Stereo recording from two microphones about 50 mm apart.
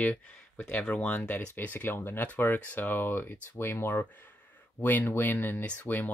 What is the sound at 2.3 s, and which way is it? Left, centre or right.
Speech, left.